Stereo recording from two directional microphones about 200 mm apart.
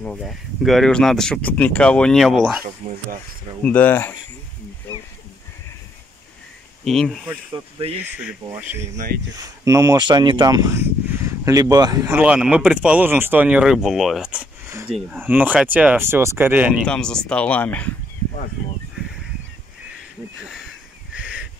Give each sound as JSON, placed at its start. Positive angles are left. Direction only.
{"t": 0.0, "sound": "speech", "side_deg": 0}
{"t": 2.8, "sound": "speech", "side_deg": -35}
{"t": 3.6, "sound": "speech", "side_deg": 10}
{"t": 6.8, "sound": "speech", "side_deg": 5}
{"t": 16.8, "sound": "speech", "side_deg": 5}
{"t": 21.1, "sound": "a sound", "side_deg": -5}